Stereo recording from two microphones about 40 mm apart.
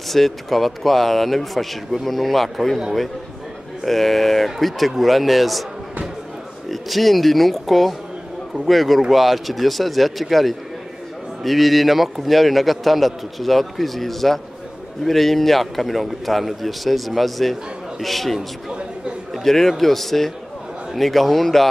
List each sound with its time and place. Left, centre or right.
0.1 s a man's voice: centre
3.8 s a man's voice: centre
6.7 s a man's voice: centre
18.7 s chatter: centre
19.3 s a man's voice: centre